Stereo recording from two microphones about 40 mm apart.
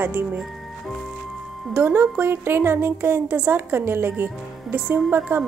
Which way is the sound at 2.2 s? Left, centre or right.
Right.